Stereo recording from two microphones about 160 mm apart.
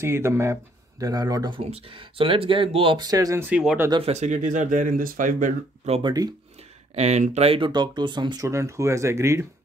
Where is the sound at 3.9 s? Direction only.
40° right (ahead or behind); by 5.5 s 60° right (ahead or behind).